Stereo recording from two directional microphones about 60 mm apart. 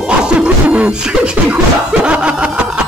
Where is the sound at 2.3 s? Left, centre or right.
Centre.